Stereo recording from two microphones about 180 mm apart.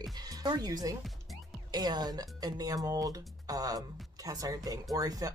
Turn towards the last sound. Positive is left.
turn(degrees=-20)  # may be behind; listen again after turning